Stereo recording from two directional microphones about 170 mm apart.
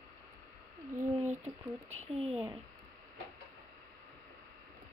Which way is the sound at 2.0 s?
40° right (ahead or behind).